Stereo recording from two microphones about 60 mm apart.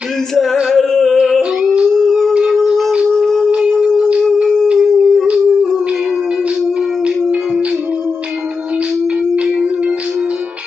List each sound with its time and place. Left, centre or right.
0.3 s music: centre
0.7 s a sound: centre
1.2 s humming: centre
2.0 s howl: centre
3.2 s a sound: centre
4.7 s humming: centre